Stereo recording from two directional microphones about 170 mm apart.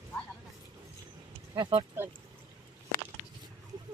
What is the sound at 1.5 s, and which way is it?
Speech, 25° right (ahead or behind).